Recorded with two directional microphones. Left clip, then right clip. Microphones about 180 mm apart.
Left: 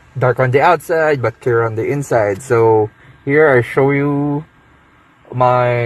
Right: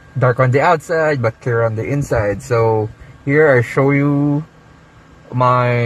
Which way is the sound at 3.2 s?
5° left (ahead or behind).